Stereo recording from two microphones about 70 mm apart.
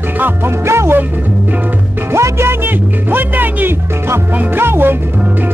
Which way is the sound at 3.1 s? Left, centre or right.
Right.